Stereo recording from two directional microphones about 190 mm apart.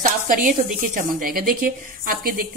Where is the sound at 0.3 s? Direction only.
45° right (ahead or behind).